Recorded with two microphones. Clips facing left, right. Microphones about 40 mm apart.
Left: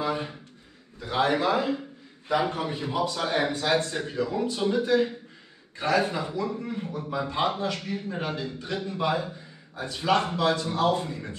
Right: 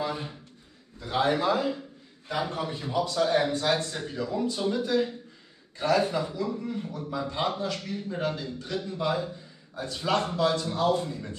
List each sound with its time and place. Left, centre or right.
0.0 s a sound: centre
1.0 s a man's voice: centre
1.4 s a man's voice: left